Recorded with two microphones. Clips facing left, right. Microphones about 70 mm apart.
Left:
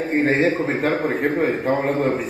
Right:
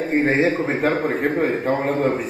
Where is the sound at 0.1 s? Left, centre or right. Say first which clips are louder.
Even; centre.